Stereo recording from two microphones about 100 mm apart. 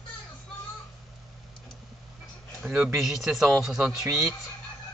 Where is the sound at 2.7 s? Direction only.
10° right (ahead or behind).